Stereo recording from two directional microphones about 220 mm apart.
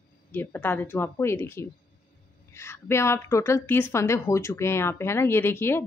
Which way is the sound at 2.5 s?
10° left (ahead or behind).